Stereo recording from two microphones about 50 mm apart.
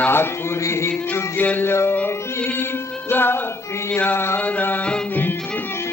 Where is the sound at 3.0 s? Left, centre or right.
Left.